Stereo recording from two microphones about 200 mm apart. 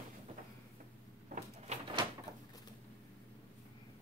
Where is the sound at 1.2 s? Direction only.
35° right (ahead or behind).